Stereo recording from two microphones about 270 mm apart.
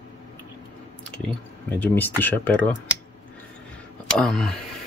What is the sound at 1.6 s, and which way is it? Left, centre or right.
Speech, centre.